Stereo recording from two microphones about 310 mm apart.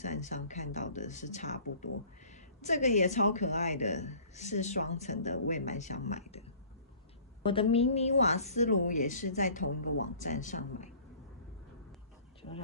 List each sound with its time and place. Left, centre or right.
0.0 s speech: left
7.4 s speech: centre